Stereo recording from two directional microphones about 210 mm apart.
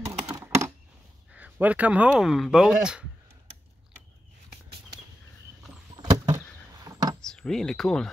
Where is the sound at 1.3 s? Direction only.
5° right (ahead or behind).